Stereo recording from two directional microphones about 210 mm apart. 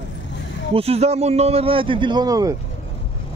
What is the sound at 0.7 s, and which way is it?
A man's voice, 30° right (ahead or behind).